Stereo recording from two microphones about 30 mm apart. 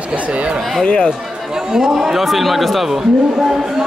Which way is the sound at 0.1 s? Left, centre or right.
Right.